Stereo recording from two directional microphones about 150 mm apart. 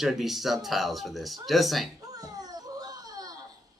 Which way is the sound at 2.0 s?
25° right (ahead or behind).